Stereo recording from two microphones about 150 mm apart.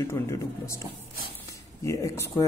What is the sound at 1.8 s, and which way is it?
Speech, 20° left (ahead or behind).